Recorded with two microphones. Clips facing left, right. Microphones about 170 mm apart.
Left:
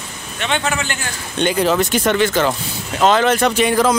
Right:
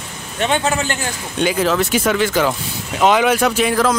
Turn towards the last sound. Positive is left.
turn(degrees=0)  # may be behind; listen again after turning